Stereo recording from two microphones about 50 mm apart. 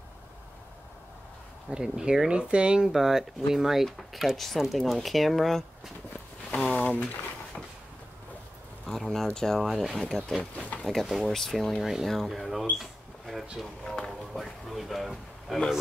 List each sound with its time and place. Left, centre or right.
1.7 s speech: centre
2.9 s speech: centre
6.5 s speech: left
8.8 s speech: centre
13.8 s music: centre
14.3 s speech: centre